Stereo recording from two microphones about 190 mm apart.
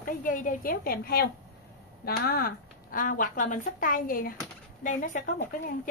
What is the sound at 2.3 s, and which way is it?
A woman's voice, 50° left (ahead or behind).